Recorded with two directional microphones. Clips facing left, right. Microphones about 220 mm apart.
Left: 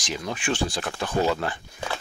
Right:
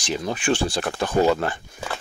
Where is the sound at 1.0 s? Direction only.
50° right (ahead or behind).